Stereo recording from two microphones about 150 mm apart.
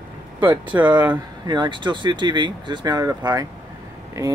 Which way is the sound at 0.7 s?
10° right (ahead or behind).